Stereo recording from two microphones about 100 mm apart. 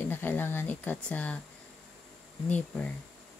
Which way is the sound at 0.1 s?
20° left (ahead or behind).